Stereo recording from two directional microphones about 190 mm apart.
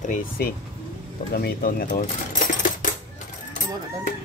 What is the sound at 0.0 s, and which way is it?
Speech, 45° left (ahead or behind).